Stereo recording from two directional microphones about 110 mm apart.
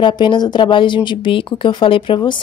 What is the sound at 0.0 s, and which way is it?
A woman's voice, 45° left (ahead or behind).